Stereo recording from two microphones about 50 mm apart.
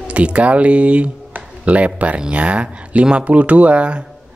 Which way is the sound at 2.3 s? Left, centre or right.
Right.